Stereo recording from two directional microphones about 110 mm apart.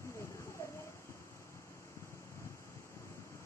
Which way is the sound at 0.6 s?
25° left (ahead or behind).